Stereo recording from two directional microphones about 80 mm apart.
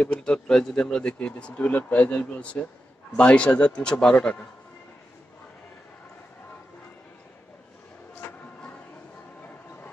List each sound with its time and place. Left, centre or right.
0.0 s speech: centre